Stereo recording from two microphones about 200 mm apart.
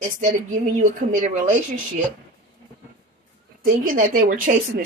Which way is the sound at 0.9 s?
40° right (ahead or behind).